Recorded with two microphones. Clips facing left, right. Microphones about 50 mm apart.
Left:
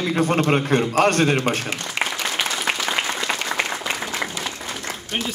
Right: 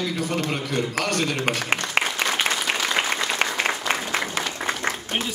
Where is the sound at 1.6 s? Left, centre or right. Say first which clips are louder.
Right 3 dB; right.